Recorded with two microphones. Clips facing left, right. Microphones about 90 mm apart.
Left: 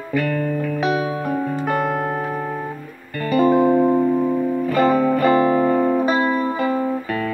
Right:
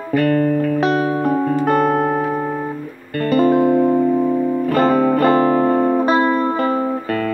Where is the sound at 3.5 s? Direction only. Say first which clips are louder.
Right 1 dB; 25° left (ahead or behind).